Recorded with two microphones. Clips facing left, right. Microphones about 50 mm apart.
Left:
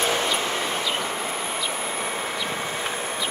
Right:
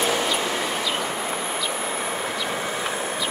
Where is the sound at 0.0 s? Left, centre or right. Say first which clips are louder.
Right 1 dB; centre.